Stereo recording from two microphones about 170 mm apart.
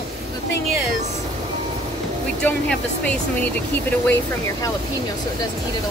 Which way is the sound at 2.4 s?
10° left (ahead or behind).